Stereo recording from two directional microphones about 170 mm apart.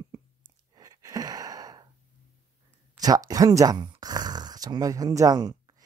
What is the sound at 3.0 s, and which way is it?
Speech, 20° right (ahead or behind).